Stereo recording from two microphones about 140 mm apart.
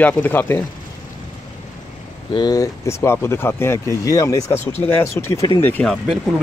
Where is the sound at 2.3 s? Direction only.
30° left (ahead or behind).